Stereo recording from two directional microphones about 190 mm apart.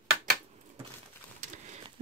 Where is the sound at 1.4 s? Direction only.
40° right (ahead or behind).